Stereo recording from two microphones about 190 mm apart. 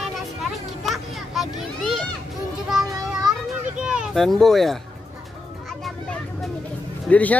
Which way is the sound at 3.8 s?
5° right (ahead or behind).